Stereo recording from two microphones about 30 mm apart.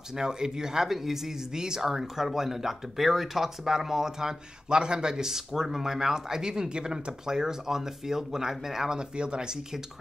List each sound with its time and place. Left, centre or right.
0.1 s a man's voice: right
1.5 s a man's voice: right
4.6 s a man's voice: right; by 8.9 s centre
8.9 s speech: right